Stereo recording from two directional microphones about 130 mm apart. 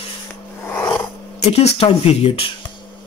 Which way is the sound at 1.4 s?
50° left (ahead or behind).